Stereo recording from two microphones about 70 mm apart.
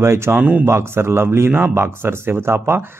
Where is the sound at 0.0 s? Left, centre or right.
Right.